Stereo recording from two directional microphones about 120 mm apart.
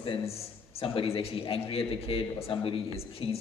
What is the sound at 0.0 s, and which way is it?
A man's voice, 50° left (ahead or behind).